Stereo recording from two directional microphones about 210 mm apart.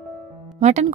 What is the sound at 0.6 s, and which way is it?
Speech, 35° right (ahead or behind).